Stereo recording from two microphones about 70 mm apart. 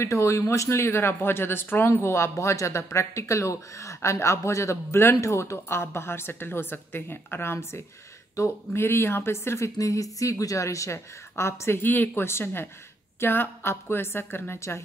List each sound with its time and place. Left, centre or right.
0.0 s a woman's voice: left
9.8 s a woman's voice: left